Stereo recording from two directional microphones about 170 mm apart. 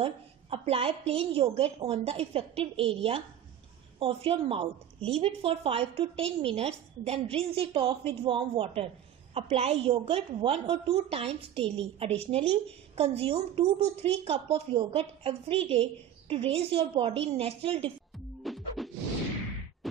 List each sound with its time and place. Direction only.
0.0 s a woman's voice: 35° right (ahead or behind)
18.4 s music: centre (ahead or behind)